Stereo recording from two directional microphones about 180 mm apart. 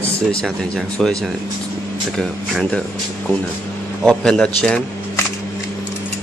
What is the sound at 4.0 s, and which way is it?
Speech, 5° left (ahead or behind).